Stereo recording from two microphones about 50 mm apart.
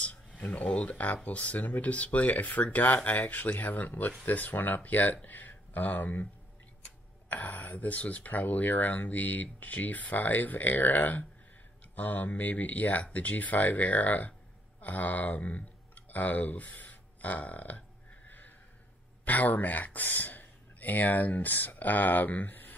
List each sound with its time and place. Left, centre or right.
0.0 s speech: left
7.2 s speech: left
19.2 s speech: left